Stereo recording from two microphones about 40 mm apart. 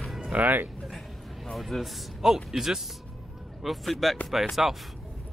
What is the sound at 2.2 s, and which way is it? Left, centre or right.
Speech, centre.